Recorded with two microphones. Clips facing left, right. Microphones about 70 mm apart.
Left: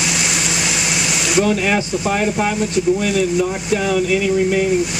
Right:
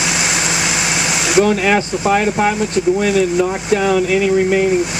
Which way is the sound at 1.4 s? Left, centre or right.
Right.